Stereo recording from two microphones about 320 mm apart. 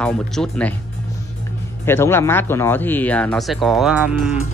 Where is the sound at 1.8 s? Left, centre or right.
Centre.